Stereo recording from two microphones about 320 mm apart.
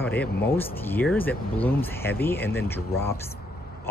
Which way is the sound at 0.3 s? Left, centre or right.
Left.